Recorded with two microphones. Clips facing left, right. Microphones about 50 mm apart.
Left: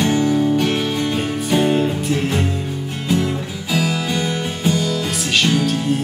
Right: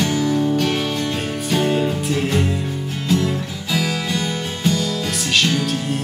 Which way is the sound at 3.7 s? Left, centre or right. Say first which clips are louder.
Left 2 dB; centre.